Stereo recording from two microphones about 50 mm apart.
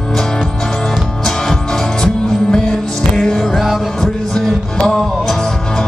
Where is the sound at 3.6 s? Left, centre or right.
Centre.